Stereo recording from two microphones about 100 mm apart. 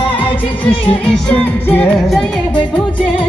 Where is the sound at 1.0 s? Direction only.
10° left (ahead or behind).